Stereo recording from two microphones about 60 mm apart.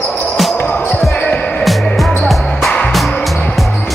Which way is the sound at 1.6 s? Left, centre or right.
Centre.